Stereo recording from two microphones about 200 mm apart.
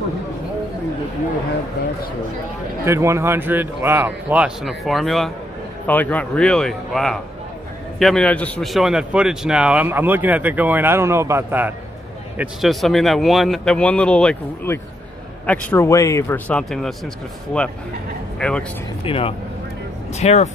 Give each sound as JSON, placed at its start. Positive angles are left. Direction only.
{"t": 2.8, "sound": "a man's voice", "side_deg": -15}
{"t": 12.4, "sound": "a man's voice", "side_deg": 0}
{"t": 18.4, "sound": "a man's voice", "side_deg": 5}
{"t": 19.0, "sound": "speech", "side_deg": 25}